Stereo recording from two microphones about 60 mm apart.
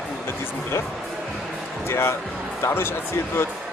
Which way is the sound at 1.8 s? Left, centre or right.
Left.